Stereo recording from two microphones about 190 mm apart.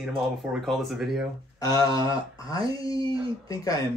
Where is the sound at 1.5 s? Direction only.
20° left (ahead or behind).